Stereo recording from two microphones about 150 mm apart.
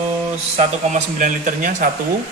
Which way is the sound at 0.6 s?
55° right (ahead or behind).